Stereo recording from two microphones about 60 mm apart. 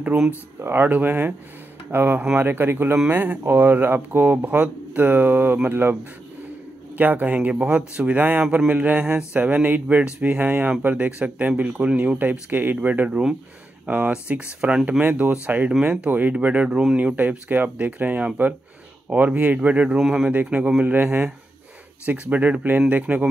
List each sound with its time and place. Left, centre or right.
0.6 s a sound: right
0.8 s speech: right
7.0 s speech: right
20.0 s speech: centre
20.4 s speech: right
22.3 s speech: right